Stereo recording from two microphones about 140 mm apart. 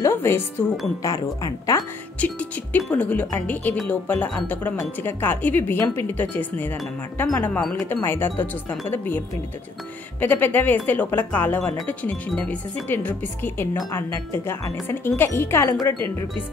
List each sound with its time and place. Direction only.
0.0 s speech: 15° left (ahead or behind)
2.1 s speech: 10° left (ahead or behind)
10.2 s speech: 15° left (ahead or behind)